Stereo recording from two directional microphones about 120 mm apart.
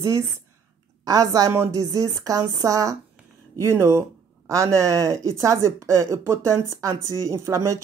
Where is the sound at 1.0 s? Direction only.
30° right (ahead or behind).